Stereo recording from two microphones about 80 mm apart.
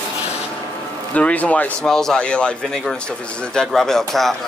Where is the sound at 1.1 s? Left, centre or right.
Centre.